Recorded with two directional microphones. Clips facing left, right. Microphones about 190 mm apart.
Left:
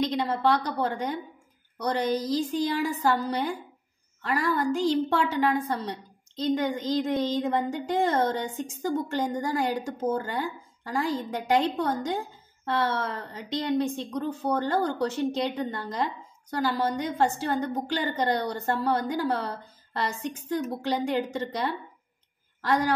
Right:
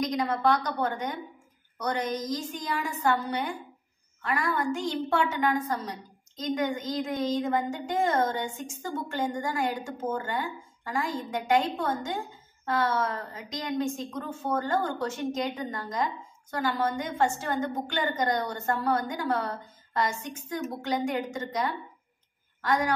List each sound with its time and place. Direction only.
0.0 s a woman's voice: 30° left (ahead or behind)